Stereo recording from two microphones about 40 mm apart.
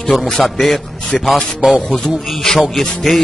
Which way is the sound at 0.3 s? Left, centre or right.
Centre.